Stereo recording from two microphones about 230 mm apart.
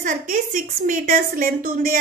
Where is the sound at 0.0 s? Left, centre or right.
Right.